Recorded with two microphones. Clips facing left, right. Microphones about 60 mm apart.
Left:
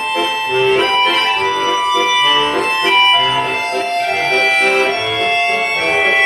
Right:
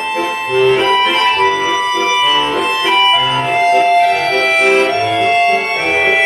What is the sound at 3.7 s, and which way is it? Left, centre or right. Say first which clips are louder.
Music: right 8 dB; right.